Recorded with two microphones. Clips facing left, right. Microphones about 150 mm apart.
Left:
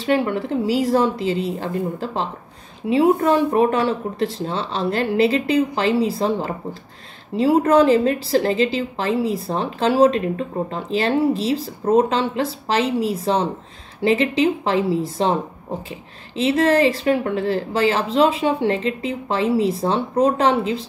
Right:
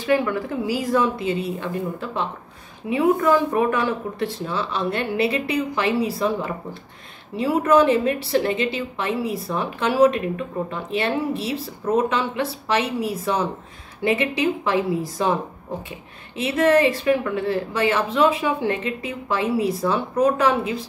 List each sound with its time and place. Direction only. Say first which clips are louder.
0.0 s a woman's voice: left 1 dB; 30° left (ahead or behind)
16.3 s a woman's voice: left 1 dB; 30° left (ahead or behind)